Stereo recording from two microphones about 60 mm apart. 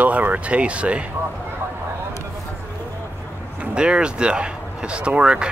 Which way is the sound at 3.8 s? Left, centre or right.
Centre.